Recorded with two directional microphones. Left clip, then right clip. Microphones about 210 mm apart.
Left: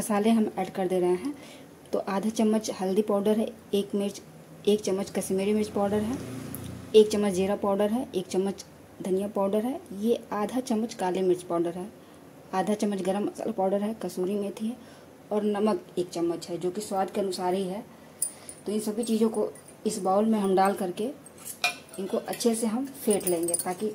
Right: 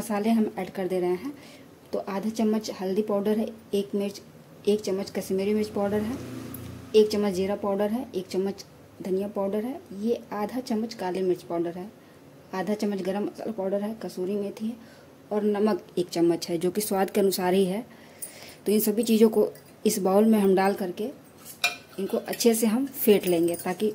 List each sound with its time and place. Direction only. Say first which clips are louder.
0.1 s a woman's voice: left 1 dB; 5° left (ahead or behind)
22.1 s speech: right 4 dB; 20° right (ahead or behind)